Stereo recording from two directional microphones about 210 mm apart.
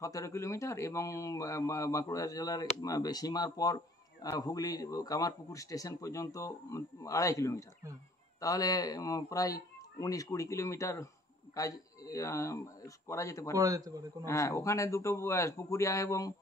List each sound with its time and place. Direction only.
0.0 s a man's voice: 15° left (ahead or behind)
13.6 s a man's voice: 15° right (ahead or behind)
14.2 s a man's voice: 15° left (ahead or behind)